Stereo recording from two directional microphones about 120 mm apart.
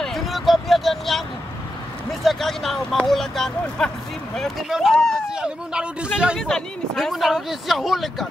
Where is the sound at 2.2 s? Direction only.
Centre (ahead or behind).